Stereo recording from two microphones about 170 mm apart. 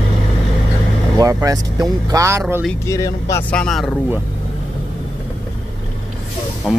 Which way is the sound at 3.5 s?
5° left (ahead or behind).